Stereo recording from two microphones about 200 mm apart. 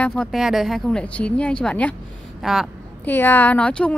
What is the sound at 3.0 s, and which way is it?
Speech, 10° left (ahead or behind).